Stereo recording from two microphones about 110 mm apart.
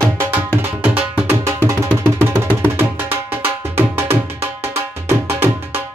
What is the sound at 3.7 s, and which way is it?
Music, 20° right (ahead or behind).